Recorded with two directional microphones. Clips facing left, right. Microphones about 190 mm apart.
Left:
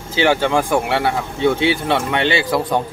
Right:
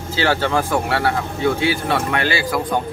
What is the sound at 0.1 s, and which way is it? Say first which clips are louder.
Speech: left 3 dB; 15° left (ahead or behind).